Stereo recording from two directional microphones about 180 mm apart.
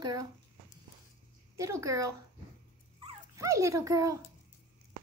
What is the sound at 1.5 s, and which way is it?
Speech, 20° right (ahead or behind).